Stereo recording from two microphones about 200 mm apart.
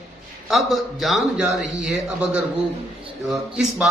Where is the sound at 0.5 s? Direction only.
Centre (ahead or behind).